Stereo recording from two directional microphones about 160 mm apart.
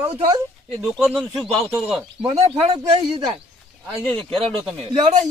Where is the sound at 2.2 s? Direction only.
35° right (ahead or behind).